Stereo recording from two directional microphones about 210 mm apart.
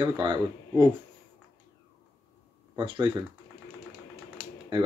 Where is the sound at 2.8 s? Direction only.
25° right (ahead or behind).